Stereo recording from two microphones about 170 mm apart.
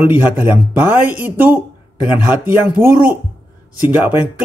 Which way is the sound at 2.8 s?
15° right (ahead or behind).